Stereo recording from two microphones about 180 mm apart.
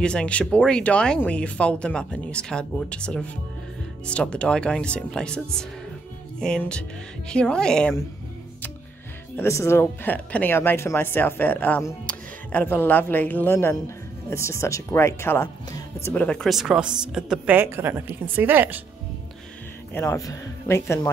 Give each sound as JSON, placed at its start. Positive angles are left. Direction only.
{"t": 0.0, "sound": "speech", "side_deg": 5}
{"t": 6.4, "sound": "speech", "side_deg": 5}
{"t": 9.4, "sound": "speech", "side_deg": 15}
{"t": 19.9, "sound": "speech", "side_deg": 15}